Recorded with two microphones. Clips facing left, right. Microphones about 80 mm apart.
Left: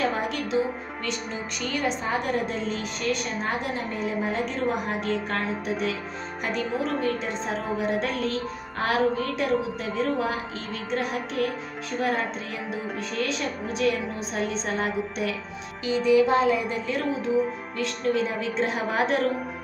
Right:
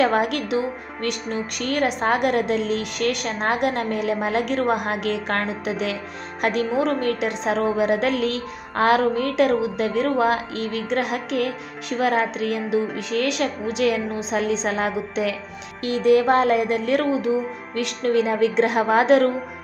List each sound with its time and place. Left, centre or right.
0.0 s a woman's voice: right
1.7 s a woman's voice: right
6.4 s a woman's voice: right
7.2 s speech: right
15.8 s speech: right
17.7 s speech: right